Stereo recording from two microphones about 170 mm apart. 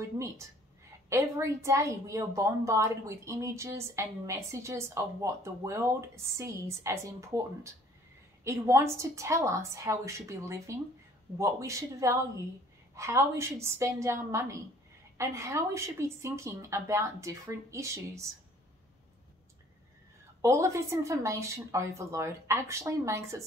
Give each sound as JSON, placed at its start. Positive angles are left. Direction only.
{"t": 0.0, "sound": "speech", "side_deg": -20}
{"t": 20.4, "sound": "speech", "side_deg": -20}